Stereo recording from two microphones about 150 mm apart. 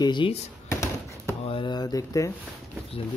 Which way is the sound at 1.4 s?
35° left (ahead or behind).